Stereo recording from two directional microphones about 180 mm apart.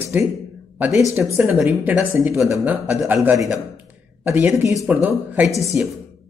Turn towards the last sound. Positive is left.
turn(degrees=-5)  # may be behind; listen again after turning